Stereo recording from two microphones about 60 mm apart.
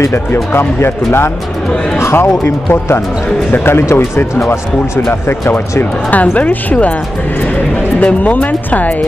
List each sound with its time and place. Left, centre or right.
0.1 s speech: left
5.5 s speech: left
8.0 s speech: left